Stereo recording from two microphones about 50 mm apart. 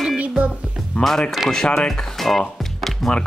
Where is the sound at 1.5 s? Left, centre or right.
Centre.